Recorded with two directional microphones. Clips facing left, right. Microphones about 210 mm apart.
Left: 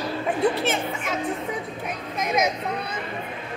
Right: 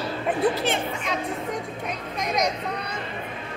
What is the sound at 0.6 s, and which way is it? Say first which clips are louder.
Speech: even; centre (ahead or behind).